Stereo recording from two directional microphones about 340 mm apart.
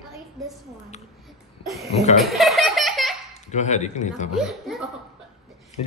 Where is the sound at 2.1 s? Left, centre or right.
Centre.